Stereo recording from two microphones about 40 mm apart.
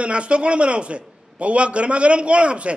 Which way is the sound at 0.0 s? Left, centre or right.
Right.